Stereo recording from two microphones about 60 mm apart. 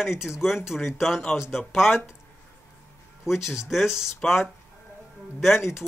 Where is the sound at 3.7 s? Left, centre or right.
Centre.